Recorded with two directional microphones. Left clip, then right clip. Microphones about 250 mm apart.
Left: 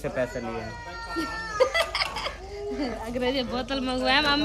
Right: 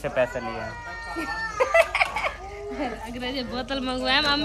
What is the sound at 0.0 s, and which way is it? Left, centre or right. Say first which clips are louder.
Speech: right 4 dB; right.